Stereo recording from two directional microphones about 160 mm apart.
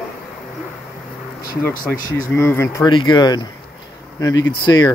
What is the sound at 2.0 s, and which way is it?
Speech, 15° left (ahead or behind).